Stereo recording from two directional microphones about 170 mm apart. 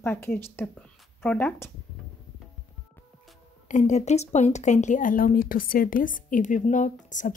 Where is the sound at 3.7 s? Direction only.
45° left (ahead or behind).